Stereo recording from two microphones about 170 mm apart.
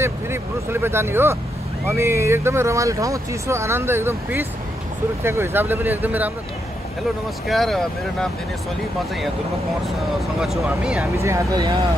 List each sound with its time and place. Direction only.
0.0 s speech: 15° right (ahead or behind)
7.4 s speech: centre (ahead or behind)
10.4 s speech: 5° right (ahead or behind)
11.1 s speech: 20° right (ahead or behind)